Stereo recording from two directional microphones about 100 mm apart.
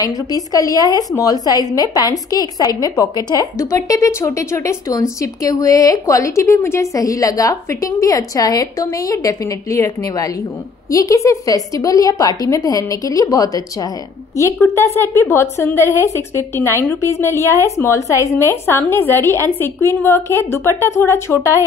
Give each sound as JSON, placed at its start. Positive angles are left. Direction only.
{"t": 0.0, "sound": "a woman's voice", "side_deg": 40}